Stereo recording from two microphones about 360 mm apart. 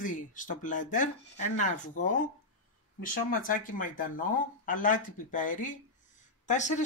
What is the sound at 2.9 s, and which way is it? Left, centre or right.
Speech, left.